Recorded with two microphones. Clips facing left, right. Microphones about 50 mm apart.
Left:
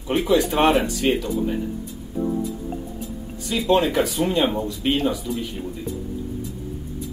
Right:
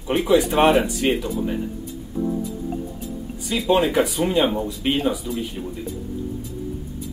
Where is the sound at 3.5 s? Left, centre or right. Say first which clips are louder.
Even; centre.